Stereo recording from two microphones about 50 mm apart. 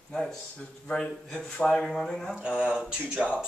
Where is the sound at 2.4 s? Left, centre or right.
Right.